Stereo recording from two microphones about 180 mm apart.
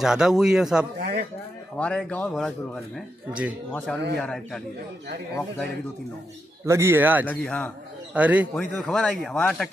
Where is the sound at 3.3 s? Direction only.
10° right (ahead or behind).